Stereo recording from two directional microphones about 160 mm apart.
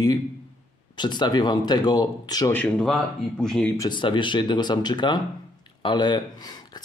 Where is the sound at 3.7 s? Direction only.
25° left (ahead or behind).